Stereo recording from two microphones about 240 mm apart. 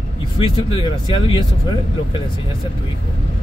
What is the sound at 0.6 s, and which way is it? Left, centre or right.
Speech, left.